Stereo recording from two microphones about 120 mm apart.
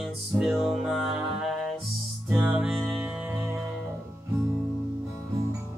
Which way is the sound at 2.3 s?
15° right (ahead or behind).